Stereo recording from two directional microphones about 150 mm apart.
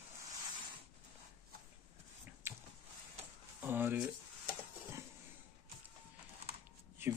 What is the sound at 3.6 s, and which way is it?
Speech, 15° right (ahead or behind).